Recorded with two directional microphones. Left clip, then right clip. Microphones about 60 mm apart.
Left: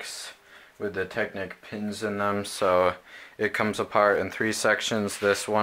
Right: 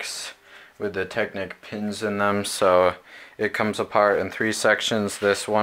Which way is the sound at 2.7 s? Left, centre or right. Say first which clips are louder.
Right 4 dB; centre.